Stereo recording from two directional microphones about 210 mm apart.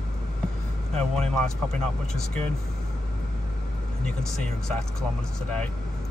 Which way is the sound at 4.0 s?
5° left (ahead or behind).